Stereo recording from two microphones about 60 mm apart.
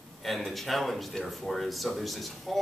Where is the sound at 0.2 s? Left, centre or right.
Centre.